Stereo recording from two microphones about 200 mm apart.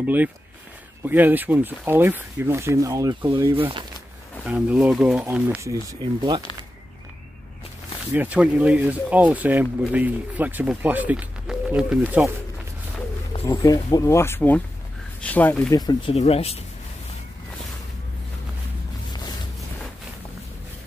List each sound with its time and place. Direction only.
0.0 s speech: 10° right (ahead or behind); by 3.8 s 25° right (ahead or behind)
4.5 s speech: 5° right (ahead or behind); by 6.4 s 20° right (ahead or behind)
8.1 s speech: 5° right (ahead or behind)
13.5 s speech: 15° left (ahead or behind)
13.7 s speech: 25° left (ahead or behind)
14.0 s speech: 15° left (ahead or behind)
15.8 s speech: 20° left (ahead or behind)
16.2 s speech: 30° left (ahead or behind)